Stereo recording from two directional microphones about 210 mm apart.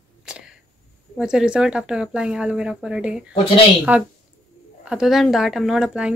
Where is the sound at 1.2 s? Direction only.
5° right (ahead or behind).